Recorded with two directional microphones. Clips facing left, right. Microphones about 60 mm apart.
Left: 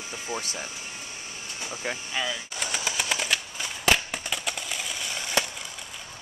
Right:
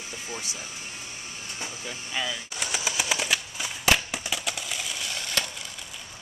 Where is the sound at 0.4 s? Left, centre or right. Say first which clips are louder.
Left 3 dB; left.